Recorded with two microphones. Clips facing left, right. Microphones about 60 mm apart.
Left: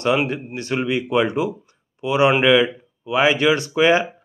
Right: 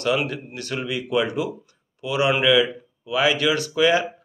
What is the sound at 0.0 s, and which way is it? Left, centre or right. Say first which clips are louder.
A man's voice: left 3 dB; left.